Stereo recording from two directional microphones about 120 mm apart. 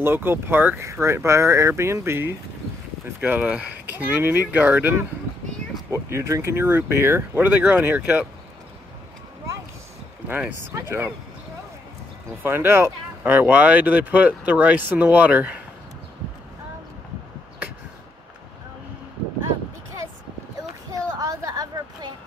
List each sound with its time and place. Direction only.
0.0 s speech: 20° right (ahead or behind)
10.7 s speech: 20° right (ahead or behind)
12.4 s speech: 20° right (ahead or behind)
21.1 s a sound: 30° right (ahead or behind)